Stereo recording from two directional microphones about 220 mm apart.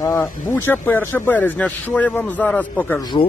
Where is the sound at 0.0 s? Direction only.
15° left (ahead or behind).